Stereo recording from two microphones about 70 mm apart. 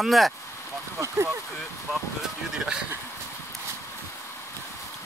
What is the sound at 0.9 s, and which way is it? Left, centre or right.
Speech, right.